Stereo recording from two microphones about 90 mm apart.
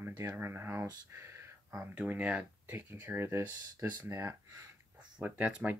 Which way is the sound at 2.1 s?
15° right (ahead or behind).